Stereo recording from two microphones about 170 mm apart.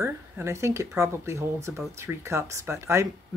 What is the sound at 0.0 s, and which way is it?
Speech, 15° right (ahead or behind).